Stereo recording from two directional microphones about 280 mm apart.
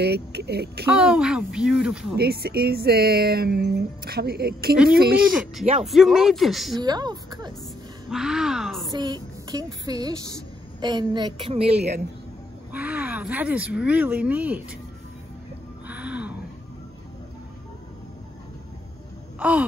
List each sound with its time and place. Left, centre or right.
0.0 s speech: right
0.8 s speech: centre
2.1 s speech: right
5.3 s speech: centre
6.8 s a woman's voice: centre
8.1 s speech: centre
8.9 s a woman's voice: centre
12.7 s speech: centre
15.9 s gasp: centre
19.4 s speech: centre